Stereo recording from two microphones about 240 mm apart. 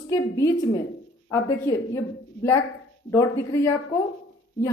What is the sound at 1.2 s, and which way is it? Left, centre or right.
Speech, centre.